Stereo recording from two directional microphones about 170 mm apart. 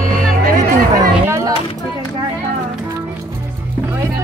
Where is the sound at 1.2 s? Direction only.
15° right (ahead or behind).